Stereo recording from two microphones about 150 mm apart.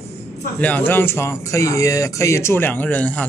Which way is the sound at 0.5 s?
10° left (ahead or behind).